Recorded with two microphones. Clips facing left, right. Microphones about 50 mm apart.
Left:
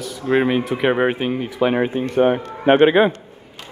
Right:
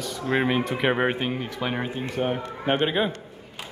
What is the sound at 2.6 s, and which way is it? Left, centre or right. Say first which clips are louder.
Speech: left 11 dB; left.